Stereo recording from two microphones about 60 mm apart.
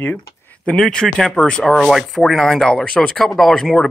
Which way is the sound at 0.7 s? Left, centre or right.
Centre.